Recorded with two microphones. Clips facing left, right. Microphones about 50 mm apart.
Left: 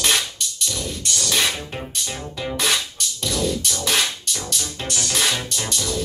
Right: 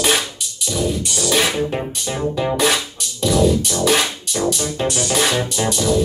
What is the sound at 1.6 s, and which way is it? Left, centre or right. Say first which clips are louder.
Music: right 8 dB; right.